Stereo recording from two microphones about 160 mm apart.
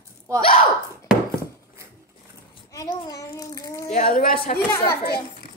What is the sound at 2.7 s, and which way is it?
Child singing, 20° left (ahead or behind).